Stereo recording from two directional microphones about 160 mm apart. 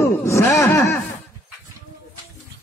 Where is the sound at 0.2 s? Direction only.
20° left (ahead or behind).